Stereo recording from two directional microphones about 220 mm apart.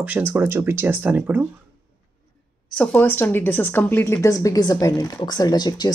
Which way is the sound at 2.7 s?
10° left (ahead or behind).